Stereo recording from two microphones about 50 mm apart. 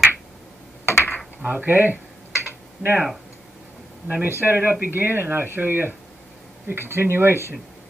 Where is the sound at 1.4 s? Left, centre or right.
Right.